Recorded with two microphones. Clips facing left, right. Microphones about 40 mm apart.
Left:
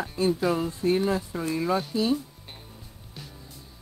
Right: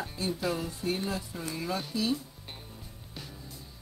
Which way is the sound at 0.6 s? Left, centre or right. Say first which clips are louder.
Left 8 dB; left.